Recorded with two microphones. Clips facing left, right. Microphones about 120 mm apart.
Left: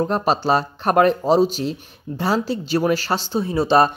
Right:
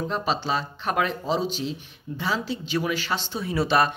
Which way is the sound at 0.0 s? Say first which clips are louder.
Left 7 dB; 50° left (ahead or behind).